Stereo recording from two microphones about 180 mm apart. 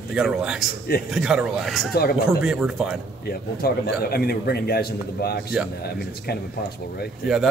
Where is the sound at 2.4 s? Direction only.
5° right (ahead or behind).